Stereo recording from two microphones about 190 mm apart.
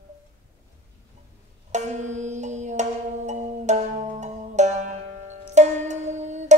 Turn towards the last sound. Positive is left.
turn(degrees=-40)  # may be behind; listen again after turning